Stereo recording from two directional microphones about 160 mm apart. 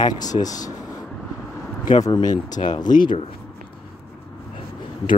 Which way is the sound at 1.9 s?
25° left (ahead or behind).